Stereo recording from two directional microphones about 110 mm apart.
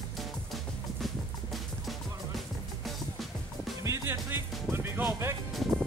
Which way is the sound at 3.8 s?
25° right (ahead or behind).